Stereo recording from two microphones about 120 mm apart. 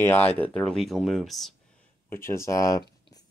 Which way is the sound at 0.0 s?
15° left (ahead or behind).